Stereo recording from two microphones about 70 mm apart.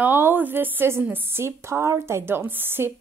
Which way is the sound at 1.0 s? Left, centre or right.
Right.